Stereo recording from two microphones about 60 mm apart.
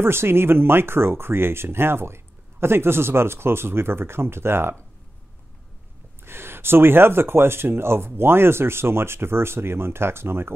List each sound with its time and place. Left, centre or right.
0.0 s speech: right
6.2 s speech: right